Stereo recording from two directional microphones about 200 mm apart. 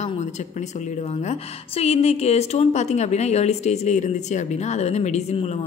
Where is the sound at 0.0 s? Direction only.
35° left (ahead or behind).